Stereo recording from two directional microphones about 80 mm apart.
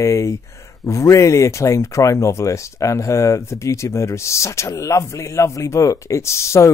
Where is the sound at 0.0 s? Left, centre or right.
Left.